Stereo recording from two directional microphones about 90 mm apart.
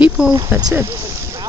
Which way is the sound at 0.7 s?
35° right (ahead or behind).